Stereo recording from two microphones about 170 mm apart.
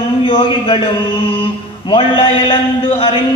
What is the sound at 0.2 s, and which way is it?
A man's voice, 30° left (ahead or behind).